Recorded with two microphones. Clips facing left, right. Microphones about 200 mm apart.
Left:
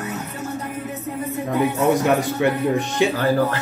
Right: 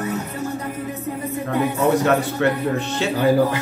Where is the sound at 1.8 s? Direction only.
15° left (ahead or behind).